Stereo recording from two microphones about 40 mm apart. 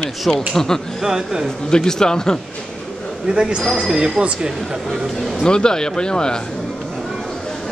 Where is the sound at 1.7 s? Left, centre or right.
Centre.